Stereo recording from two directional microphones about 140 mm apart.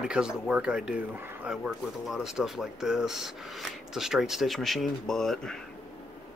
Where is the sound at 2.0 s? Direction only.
5° right (ahead or behind).